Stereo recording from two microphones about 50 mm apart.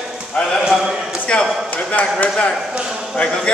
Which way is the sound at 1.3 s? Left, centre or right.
Centre.